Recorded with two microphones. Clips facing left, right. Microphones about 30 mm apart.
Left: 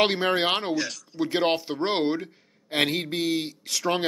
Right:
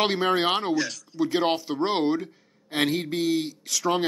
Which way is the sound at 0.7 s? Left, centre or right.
Centre.